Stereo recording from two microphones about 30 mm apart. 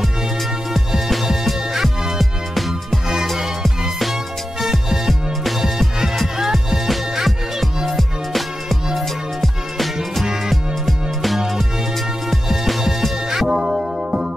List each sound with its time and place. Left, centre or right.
1.1 s music: centre
2.1 s music: centre
4.6 s music: centre
6.9 s music: centre
10.5 s music: centre
13.0 s music: centre
13.5 s music: centre